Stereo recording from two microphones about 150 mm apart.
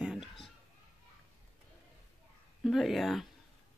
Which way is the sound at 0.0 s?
5° right (ahead or behind).